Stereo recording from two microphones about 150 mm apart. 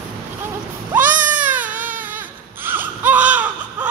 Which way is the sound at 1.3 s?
10° right (ahead or behind).